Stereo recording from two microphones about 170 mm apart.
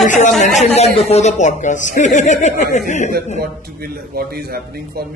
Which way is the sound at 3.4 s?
60° right (ahead or behind).